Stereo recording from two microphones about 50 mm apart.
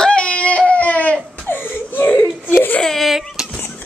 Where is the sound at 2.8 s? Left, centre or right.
Centre.